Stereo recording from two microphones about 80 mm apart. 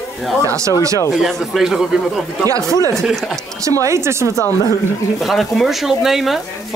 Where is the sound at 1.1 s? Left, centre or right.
Centre.